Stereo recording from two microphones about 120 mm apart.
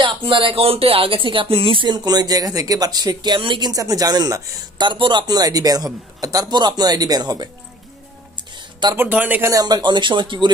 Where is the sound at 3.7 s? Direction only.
30° right (ahead or behind).